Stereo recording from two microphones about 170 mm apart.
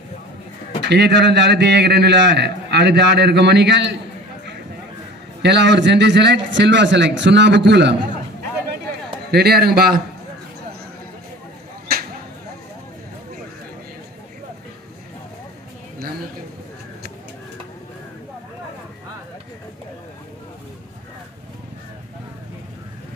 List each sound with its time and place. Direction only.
0.8 s a man's voice: 80° right
5.4 s speech: 90° right
9.3 s a man's voice: 70° right (ahead or behind)